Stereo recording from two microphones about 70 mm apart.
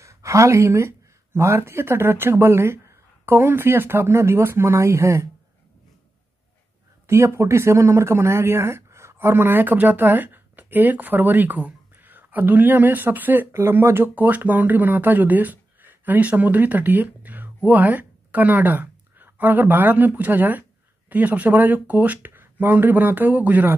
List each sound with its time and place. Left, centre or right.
0.0 s speech: right
7.1 s speech: right
13.5 s speech: right